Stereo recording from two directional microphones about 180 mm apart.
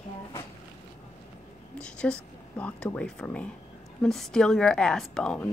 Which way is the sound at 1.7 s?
5° left (ahead or behind).